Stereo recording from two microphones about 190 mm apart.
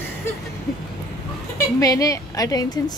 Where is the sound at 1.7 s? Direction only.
15° left (ahead or behind).